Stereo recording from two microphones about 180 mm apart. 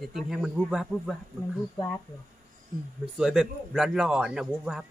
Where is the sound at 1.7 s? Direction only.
10° left (ahead or behind).